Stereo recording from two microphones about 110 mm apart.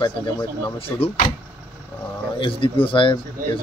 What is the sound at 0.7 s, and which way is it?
Speech, 60° left (ahead or behind).